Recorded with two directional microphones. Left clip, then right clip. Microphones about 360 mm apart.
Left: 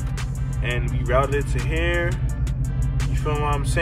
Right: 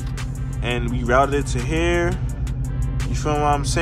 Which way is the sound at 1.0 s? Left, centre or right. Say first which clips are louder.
Right 4 dB; right.